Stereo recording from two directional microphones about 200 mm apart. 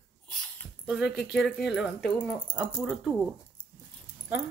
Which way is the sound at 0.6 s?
5° right (ahead or behind).